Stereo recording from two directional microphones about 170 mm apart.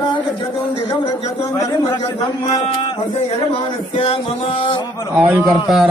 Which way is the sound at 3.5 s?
30° left (ahead or behind).